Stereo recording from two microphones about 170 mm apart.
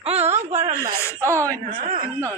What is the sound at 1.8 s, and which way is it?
Speech, 50° right (ahead or behind).